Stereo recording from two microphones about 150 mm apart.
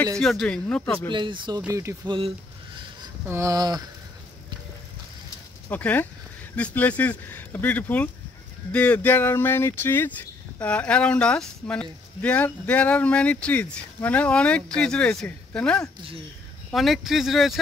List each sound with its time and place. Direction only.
0.2 s speech: centre (ahead or behind)
1.1 s speech: 35° right (ahead or behind)
1.7 s speech: 20° right (ahead or behind)
2.0 s speech: 35° right (ahead or behind)
3.3 s speech: 20° right (ahead or behind)
5.7 s speech: 10° left (ahead or behind)